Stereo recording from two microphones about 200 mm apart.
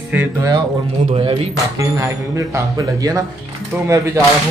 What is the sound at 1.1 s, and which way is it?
Speech, 30° right (ahead or behind).